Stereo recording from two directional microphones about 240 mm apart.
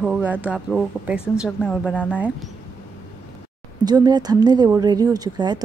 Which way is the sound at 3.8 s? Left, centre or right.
Centre.